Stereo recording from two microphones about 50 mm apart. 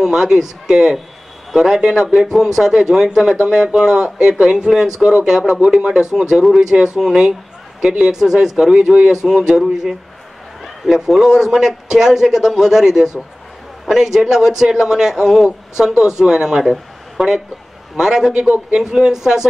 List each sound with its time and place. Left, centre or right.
0.0 s a man's voice: centre
8.0 s a man's voice: centre